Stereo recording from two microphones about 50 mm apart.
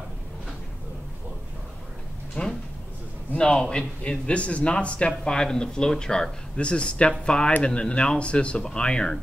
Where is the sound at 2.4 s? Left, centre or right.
Left.